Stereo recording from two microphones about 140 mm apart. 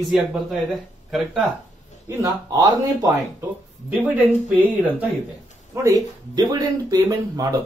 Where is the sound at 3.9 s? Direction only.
10° right (ahead or behind).